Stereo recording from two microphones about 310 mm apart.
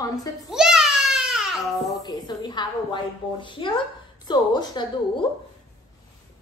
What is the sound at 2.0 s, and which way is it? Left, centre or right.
A woman's voice, centre.